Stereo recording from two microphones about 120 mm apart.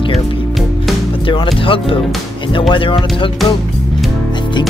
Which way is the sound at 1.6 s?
45° left (ahead or behind).